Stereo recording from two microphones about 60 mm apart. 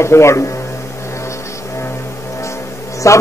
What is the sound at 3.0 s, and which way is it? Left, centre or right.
Speech, left.